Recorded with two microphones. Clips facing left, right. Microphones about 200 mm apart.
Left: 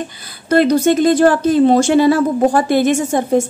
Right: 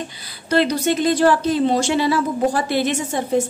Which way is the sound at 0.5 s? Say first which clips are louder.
Left 6 dB; 50° left (ahead or behind).